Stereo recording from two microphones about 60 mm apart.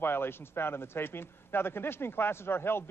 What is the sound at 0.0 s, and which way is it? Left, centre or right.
Speech, left.